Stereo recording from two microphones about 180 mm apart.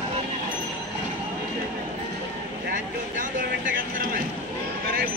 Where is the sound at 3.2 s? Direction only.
50° right (ahead or behind).